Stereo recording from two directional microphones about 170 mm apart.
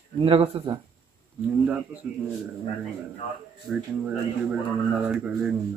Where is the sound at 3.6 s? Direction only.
5° right (ahead or behind).